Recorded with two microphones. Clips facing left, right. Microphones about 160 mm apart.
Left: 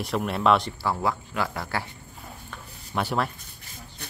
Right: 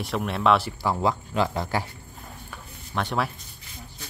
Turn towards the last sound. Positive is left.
turn(degrees=5)  # may be behind; listen again after turning